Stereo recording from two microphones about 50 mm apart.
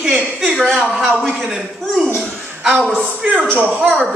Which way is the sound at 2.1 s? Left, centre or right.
Right.